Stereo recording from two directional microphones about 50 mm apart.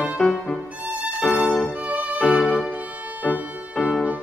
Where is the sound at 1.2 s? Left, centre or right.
Left.